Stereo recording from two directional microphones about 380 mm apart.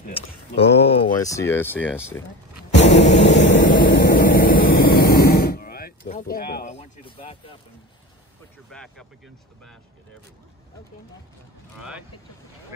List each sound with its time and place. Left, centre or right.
0.0 s speech: centre
2.7 s a sound: centre
3.6 s vehicle: left
8.6 s speech: centre